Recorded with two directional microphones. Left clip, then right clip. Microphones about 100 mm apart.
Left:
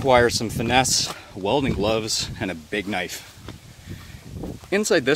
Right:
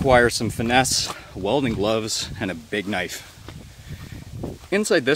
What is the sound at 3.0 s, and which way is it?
Speech, 30° right (ahead or behind).